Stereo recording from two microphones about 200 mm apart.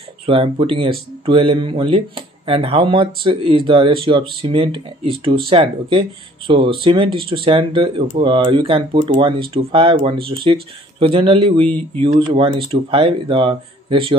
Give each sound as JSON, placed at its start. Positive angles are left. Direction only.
{"t": 0.3, "sound": "speech", "side_deg": -25}